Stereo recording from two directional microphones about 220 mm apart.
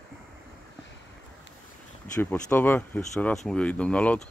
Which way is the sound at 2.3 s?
10° left (ahead or behind).